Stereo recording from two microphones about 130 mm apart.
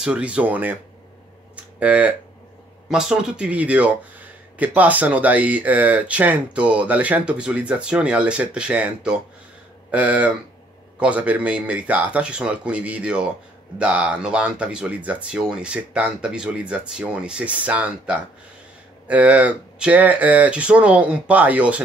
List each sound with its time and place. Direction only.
0.0 s speech: 10° right (ahead or behind)
1.8 s speech: 10° right (ahead or behind)